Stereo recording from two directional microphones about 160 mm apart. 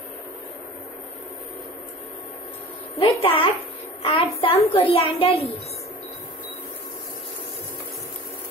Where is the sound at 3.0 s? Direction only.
35° left (ahead or behind).